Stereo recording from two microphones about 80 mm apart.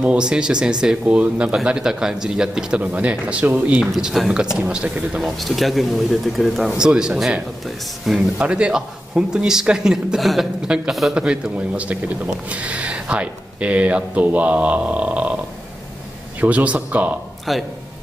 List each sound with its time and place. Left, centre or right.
0.0 s speech: centre
3.8 s speech: centre
4.6 s speech: centre
5.2 s speech: centre
8.4 s speech: centre
16.3 s speech: centre
17.5 s speech: centre